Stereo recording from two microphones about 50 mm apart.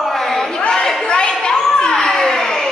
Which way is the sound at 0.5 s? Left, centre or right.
Centre.